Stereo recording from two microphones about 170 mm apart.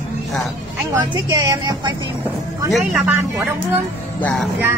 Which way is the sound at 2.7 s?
10° right (ahead or behind).